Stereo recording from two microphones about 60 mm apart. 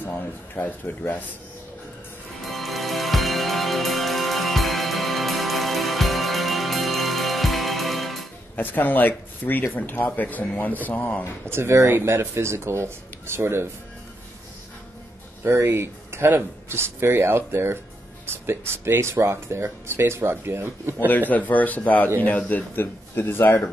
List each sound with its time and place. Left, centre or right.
0.1 s speech: left
2.4 s music: centre
8.5 s speech: left
11.4 s speech: right
15.5 s speech: right
21.1 s speech: left